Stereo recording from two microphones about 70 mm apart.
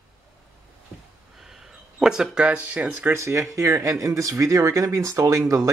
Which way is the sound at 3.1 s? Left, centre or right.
Right.